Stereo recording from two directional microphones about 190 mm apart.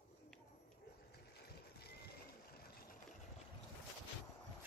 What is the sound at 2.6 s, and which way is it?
Vehicle, 50° left (ahead or behind).